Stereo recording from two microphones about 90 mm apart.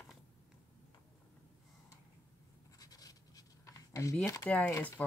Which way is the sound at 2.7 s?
45° left (ahead or behind).